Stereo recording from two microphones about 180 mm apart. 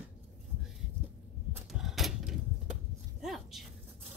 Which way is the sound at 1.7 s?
Centre (ahead or behind).